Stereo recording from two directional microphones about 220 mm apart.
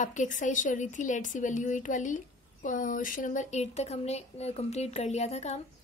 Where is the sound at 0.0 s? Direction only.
35° left (ahead or behind).